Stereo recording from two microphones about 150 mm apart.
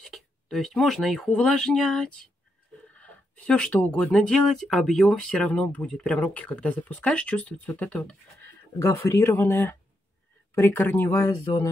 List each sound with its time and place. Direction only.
0.0 s speech: 5° left (ahead or behind)